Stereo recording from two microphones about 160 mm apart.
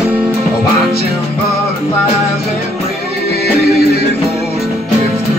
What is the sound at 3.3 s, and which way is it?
Music, 80° left.